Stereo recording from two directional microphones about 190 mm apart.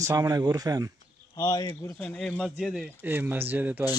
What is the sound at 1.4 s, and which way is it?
Speech, 20° left (ahead or behind).